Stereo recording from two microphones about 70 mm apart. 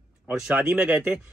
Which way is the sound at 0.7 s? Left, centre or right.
Centre.